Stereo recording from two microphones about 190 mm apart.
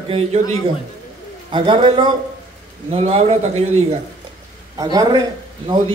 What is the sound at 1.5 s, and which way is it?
A man's voice, 25° right (ahead or behind).